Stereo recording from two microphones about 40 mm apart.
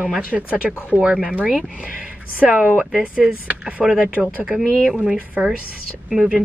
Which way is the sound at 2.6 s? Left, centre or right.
Right.